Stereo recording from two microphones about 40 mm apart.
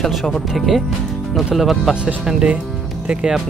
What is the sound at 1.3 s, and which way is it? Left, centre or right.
Speech, centre.